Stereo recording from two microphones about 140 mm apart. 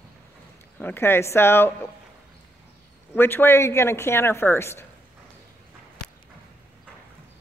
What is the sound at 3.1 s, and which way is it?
A woman's voice, 15° left (ahead or behind).